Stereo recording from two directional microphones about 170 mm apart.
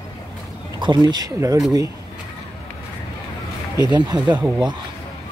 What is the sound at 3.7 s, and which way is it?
Speech, 25° right (ahead or behind).